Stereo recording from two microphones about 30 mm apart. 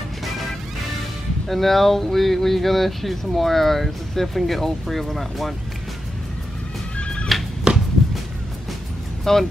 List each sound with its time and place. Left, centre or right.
1.5 s speech: centre
7.3 s music: centre
7.7 s a sound: right
9.2 s speech: centre